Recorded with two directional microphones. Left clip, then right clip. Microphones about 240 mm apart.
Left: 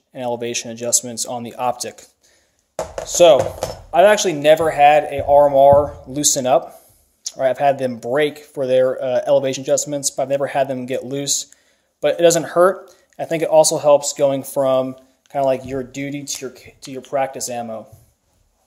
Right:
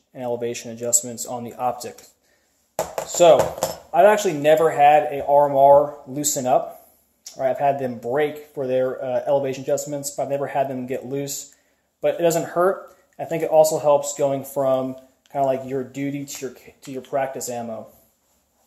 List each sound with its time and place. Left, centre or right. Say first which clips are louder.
0.1 s speech: left 3 dB; left
3.1 s speech: left 3 dB; left